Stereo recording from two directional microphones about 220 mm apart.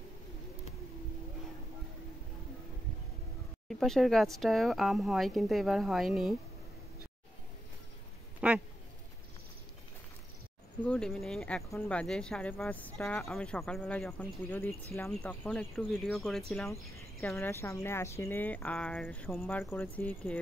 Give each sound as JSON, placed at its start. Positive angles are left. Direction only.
{"t": 3.6, "sound": "speech", "side_deg": 0}
{"t": 8.4, "sound": "a sound", "side_deg": -5}
{"t": 10.8, "sound": "speech", "side_deg": 5}